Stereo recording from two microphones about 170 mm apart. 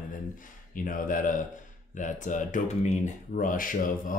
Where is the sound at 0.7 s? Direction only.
55° left (ahead or behind).